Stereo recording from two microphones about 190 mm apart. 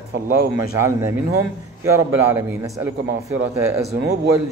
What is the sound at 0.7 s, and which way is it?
Speech, 15° right (ahead or behind).